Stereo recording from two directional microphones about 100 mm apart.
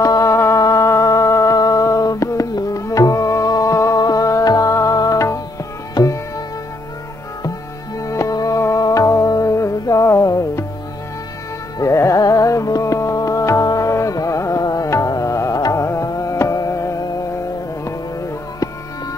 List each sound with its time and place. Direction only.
0.0 s music: 35° left (ahead or behind)
6.0 s music: 45° left (ahead or behind)
8.0 s music: 35° left (ahead or behind)
11.8 s music: 30° left (ahead or behind)